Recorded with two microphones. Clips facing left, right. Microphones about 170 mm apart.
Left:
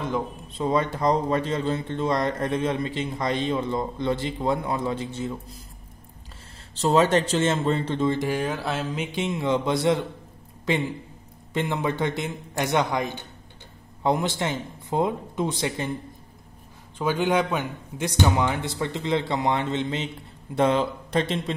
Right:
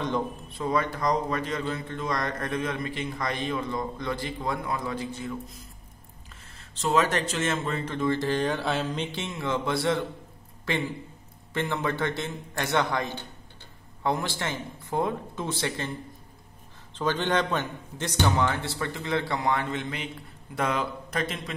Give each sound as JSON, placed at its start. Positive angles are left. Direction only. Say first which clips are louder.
{"t": 0.5, "sound": "speech", "louder": "left 5 dB", "side_deg": 25}
{"t": 6.7, "sound": "speech", "louder": "left 5 dB", "side_deg": 30}
{"t": 8.2, "sound": "a man's voice", "louder": "even", "side_deg": 10}
{"t": 11.5, "sound": "a man's voice", "louder": "left 3 dB", "side_deg": 15}
{"t": 17.0, "sound": "a man's voice", "louder": "left 3 dB", "side_deg": 10}